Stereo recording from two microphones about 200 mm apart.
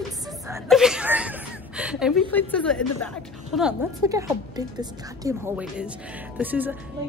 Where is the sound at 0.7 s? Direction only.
Centre (ahead or behind).